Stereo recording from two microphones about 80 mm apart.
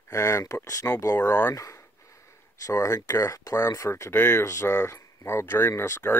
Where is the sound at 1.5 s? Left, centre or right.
Left.